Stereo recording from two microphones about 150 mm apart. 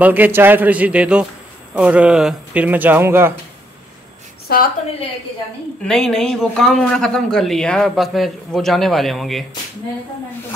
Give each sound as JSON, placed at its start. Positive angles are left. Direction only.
{"t": 0.0, "sound": "speech", "side_deg": -10}
{"t": 4.5, "sound": "a woman's voice", "side_deg": 90}
{"t": 5.9, "sound": "speech", "side_deg": 0}